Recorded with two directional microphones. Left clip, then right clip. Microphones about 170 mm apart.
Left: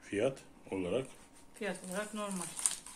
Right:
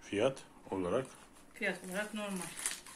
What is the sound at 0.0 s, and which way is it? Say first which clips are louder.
Speech: right 1 dB; 10° left (ahead or behind).